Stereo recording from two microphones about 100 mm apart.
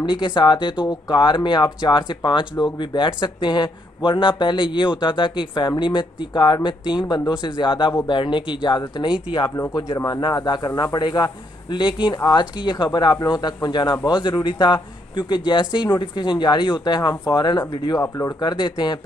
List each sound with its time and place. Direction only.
0.0 s speech: 50° left (ahead or behind)
9.7 s speech: 35° left (ahead or behind)
10.2 s speech: 45° left (ahead or behind)
18.0 s speech: 30° left (ahead or behind)
18.4 s speech: 50° left (ahead or behind)